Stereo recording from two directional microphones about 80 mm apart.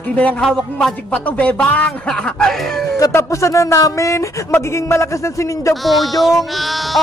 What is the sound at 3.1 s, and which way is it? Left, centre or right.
Speech, left.